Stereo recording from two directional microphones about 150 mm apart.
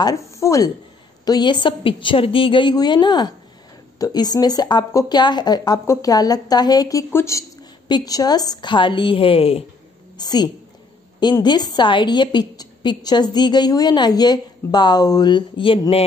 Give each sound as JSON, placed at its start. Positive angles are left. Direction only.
{"t": 0.3, "sound": "a sound", "side_deg": 20}
{"t": 1.2, "sound": "a woman's voice", "side_deg": 25}
{"t": 10.1, "sound": "a woman's voice", "side_deg": 30}